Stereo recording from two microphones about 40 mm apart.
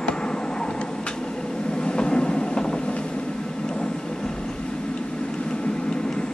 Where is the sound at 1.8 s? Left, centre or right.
Left.